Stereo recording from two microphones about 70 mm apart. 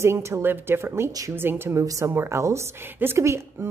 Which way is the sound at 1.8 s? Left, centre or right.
Right.